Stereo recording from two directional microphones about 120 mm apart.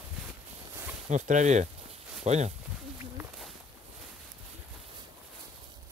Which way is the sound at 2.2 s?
70° right (ahead or behind).